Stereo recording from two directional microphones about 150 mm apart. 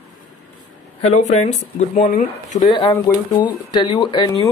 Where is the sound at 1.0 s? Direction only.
50° left (ahead or behind).